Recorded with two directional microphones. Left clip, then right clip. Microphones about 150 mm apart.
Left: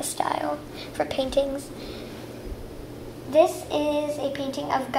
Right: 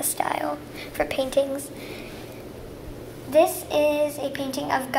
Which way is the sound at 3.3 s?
20° right (ahead or behind).